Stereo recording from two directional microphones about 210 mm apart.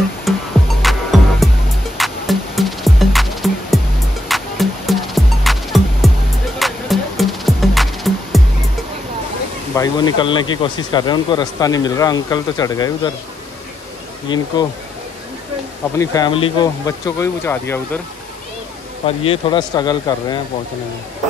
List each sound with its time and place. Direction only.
0.3 s music: centre (ahead or behind)
9.8 s speech: 20° left (ahead or behind)
14.3 s speech: 20° left (ahead or behind)
16.0 s speech: 15° left (ahead or behind)
19.0 s speech: 25° left (ahead or behind)